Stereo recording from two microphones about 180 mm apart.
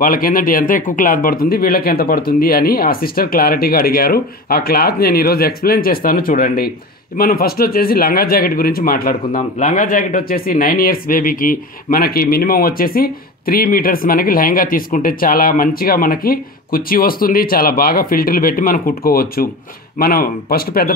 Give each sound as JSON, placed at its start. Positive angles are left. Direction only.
{"t": 0.0, "sound": "speech", "side_deg": 50}